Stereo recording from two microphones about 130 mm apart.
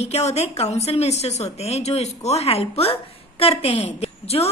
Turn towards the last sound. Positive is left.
turn(degrees=50)  # may be behind; listen again after turning